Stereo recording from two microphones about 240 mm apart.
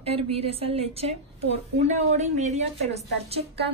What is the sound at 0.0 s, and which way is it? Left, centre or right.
A woman's voice, right.